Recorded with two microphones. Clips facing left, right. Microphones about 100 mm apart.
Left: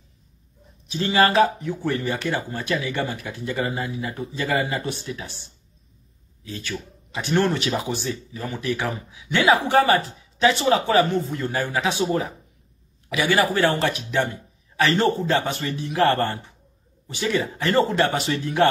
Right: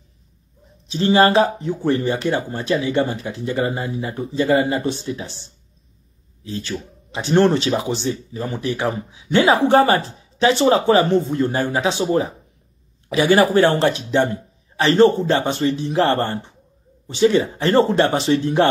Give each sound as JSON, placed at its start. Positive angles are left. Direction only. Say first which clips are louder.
{"t": 0.8, "sound": "speech", "louder": "right 5 dB", "side_deg": -30}